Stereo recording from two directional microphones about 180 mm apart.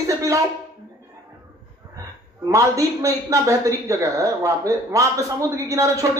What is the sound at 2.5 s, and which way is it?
A man's voice, 20° right (ahead or behind).